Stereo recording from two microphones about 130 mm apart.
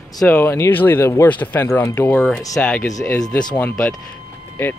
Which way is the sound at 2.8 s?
25° left (ahead or behind).